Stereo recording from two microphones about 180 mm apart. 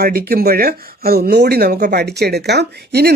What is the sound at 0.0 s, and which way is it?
Speech, 60° right (ahead or behind).